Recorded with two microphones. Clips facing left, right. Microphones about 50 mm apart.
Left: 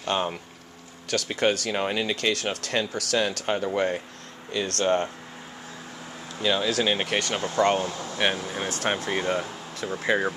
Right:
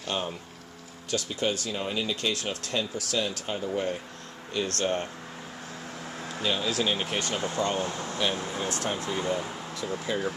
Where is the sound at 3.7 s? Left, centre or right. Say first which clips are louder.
Left 4 dB; left.